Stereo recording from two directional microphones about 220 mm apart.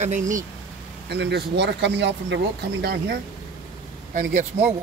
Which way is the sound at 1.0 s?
50° right (ahead or behind).